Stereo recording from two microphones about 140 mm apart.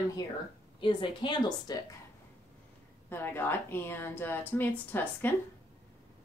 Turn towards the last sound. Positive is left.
turn(degrees=15)  # may be behind; listen again after turning